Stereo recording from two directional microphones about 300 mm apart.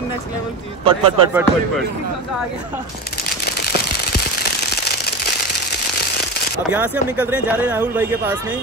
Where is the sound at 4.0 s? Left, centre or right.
Left.